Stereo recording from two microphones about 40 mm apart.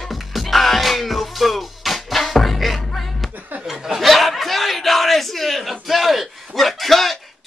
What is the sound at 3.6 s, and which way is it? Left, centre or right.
Chuckle, centre.